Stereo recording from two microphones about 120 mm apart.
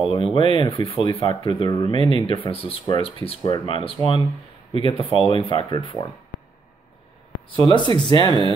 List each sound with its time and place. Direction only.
0.1 s speech: 50° left (ahead or behind)
7.6 s speech: 40° left (ahead or behind)